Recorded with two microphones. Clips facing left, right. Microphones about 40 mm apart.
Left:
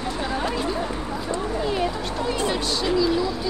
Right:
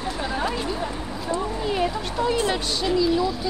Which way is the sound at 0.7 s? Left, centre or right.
Centre.